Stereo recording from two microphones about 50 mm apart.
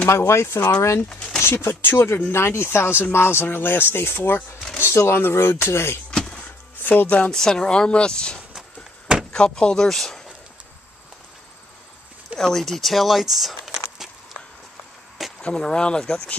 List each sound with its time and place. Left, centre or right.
0.1 s speech: left
2.3 s speech: left
4.7 s speech: left
6.1 s music: centre
7.0 s speech: left
7.2 s speech: centre
12.4 s speech: centre
15.4 s speech: centre